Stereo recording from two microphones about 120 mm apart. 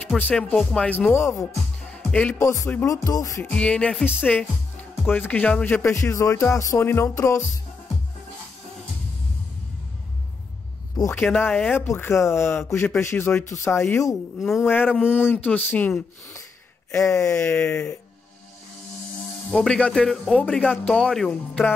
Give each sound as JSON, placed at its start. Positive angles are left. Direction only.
{"t": 0.2, "sound": "a man's voice", "side_deg": 10}
{"t": 1.9, "sound": "music", "side_deg": 10}
{"t": 2.3, "sound": "music", "side_deg": 25}
{"t": 3.4, "sound": "a man's voice", "side_deg": 10}
{"t": 5.9, "sound": "music", "side_deg": 25}
{"t": 11.3, "sound": "music", "side_deg": 15}
{"t": 14.4, "sound": "speech", "side_deg": 0}
{"t": 14.7, "sound": "a man's voice", "side_deg": 15}
{"t": 17.0, "sound": "music", "side_deg": 25}
{"t": 17.4, "sound": "a man's voice", "side_deg": 15}
{"t": 19.5, "sound": "a man's voice", "side_deg": 5}